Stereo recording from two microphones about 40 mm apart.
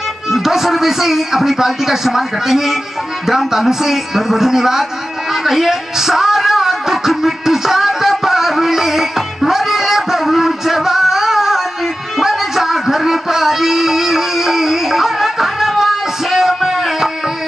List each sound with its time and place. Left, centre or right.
0.3 s a man's voice: centre
5.3 s music: centre